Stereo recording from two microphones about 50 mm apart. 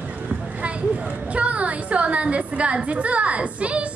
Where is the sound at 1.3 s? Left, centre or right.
Right.